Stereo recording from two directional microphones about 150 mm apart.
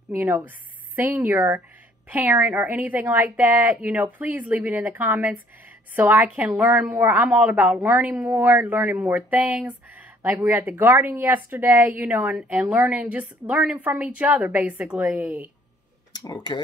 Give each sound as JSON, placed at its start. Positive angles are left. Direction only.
{"t": 0.1, "sound": "speech", "side_deg": -10}
{"t": 16.1, "sound": "tick-tock", "side_deg": 25}